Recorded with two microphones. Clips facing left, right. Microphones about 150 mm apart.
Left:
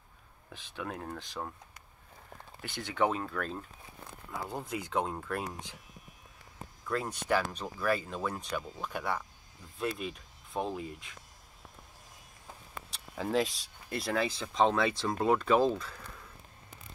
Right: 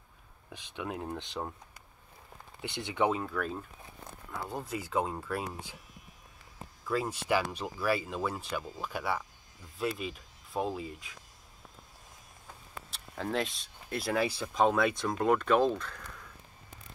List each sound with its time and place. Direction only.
0.5 s speech: 15° right (ahead or behind)
2.6 s speech: 20° right (ahead or behind)
6.9 s speech: 5° right (ahead or behind)
12.9 s speech: centre (ahead or behind)